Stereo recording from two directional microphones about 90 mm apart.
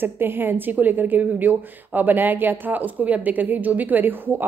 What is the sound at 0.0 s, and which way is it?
A woman's voice, 25° right (ahead or behind).